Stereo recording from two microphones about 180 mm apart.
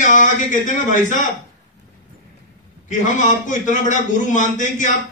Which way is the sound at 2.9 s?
45° left (ahead or behind).